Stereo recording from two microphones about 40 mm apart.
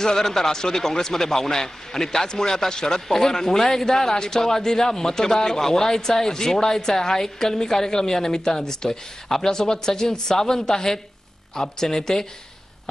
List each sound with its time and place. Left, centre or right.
0.0 s a man's voice: centre